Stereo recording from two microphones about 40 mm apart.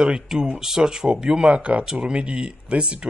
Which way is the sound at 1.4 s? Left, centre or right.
Right.